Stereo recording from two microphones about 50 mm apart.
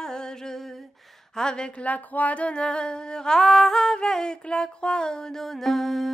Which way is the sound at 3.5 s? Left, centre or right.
Centre.